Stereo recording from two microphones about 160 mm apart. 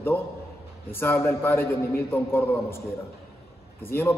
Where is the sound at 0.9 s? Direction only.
15° left (ahead or behind).